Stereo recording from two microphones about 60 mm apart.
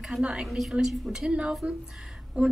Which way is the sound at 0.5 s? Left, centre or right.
Centre.